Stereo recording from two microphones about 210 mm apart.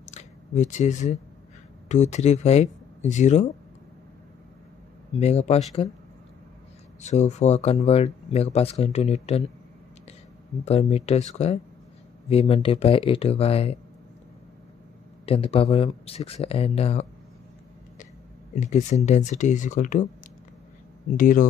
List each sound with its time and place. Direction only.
0.0 s a sound: 35° left (ahead or behind)
1.9 s speech: 35° left (ahead or behind)
5.1 s speech: 30° left (ahead or behind)
7.0 s speech: 35° left (ahead or behind)
10.6 s speech: 30° left (ahead or behind)
15.2 s speech: 30° left (ahead or behind)
18.5 s speech: 35° left (ahead or behind)
21.2 s speech: 40° left (ahead or behind)